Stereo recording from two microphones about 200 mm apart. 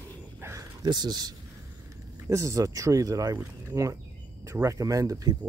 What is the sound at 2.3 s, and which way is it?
Speech, 15° right (ahead or behind).